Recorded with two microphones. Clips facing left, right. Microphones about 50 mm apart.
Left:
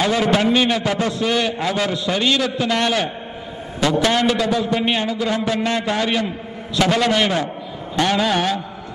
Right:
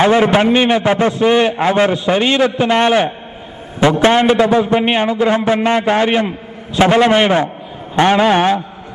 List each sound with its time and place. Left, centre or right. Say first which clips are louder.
0.0 s a man's voice: right 6 dB; right